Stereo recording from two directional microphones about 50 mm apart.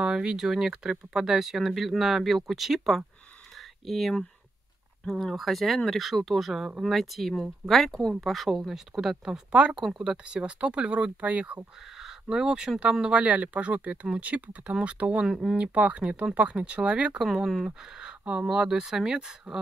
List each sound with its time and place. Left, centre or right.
0.0 s speech: centre
9.5 s speech: right
12.0 s speech: centre; by 15.2 s right
15.2 s speech: centre
15.5 s speech: right
17.2 s speech: centre
17.6 s speech: centre